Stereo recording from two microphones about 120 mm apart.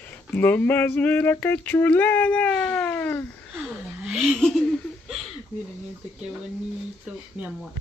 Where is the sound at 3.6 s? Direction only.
5° right (ahead or behind).